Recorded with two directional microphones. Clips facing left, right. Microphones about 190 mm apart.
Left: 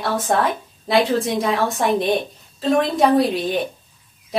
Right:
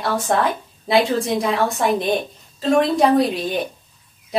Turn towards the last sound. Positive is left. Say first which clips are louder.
# even
turn(degrees=0)  # may be behind; listen again after turning